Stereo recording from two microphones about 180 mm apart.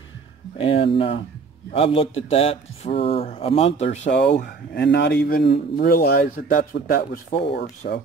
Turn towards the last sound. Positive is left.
turn(degrees=55)  # may be behind; listen again after turning